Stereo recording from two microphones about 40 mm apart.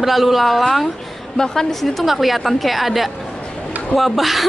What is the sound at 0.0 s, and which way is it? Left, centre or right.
Speech, centre.